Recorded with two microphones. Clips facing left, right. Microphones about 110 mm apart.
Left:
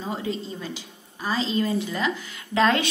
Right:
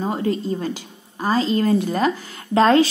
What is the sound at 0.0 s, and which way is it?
A woman's voice, 50° right (ahead or behind).